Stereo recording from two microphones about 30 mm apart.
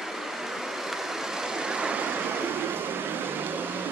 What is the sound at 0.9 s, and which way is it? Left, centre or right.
Vehicle, centre.